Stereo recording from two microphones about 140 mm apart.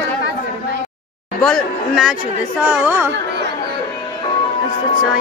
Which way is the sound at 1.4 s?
5° left (ahead or behind).